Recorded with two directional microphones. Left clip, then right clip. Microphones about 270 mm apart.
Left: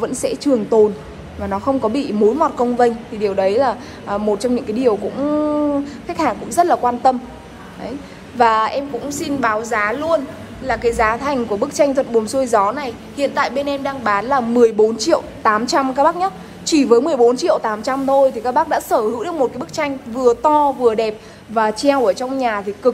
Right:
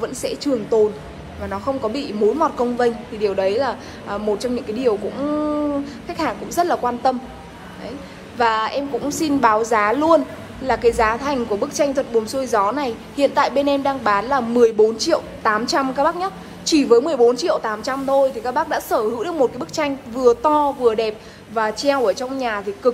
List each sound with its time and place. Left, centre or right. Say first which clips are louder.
0.0 s a woman's voice: left 4 dB; centre
8.4 s a woman's voice: left 4 dB; centre
9.0 s a woman's voice: right 5 dB; right